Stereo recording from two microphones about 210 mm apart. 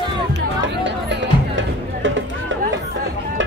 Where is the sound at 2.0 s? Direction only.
65° right (ahead or behind).